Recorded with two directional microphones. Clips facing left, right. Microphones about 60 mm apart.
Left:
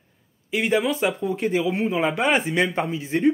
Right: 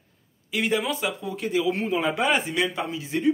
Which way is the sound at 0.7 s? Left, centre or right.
Left.